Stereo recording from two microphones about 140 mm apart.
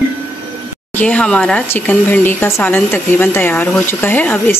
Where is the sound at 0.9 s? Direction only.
10° left (ahead or behind).